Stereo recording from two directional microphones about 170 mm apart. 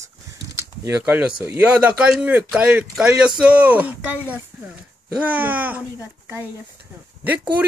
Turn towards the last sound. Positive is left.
turn(degrees=-10)  # may be behind; listen again after turning